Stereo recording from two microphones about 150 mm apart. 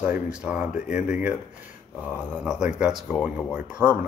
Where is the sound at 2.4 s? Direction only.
5° right (ahead or behind).